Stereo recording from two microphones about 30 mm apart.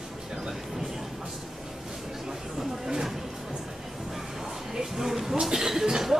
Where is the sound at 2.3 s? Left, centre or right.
Centre.